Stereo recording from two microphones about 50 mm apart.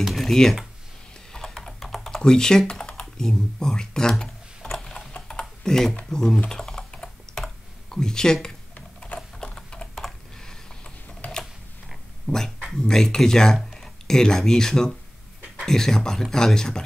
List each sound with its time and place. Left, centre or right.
0.2 s speech: centre
1.3 s typing: centre
6.0 s speech: centre
6.5 s computer keyboard: centre
7.9 s speech: centre
9.4 s typing: centre
12.3 s speech: centre